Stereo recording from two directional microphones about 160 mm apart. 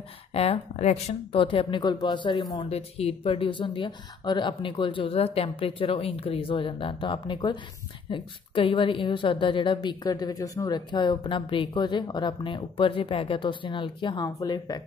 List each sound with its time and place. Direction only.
0.3 s a woman's voice: 40° left (ahead or behind)
1.3 s speech: 35° left (ahead or behind)
2.7 s a woman's voice: 40° left (ahead or behind)